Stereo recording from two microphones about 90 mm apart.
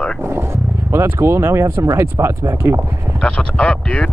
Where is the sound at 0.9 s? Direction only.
30° right (ahead or behind).